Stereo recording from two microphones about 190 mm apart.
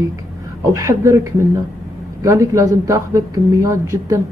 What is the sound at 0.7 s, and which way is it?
A woman's voice, 15° right (ahead or behind).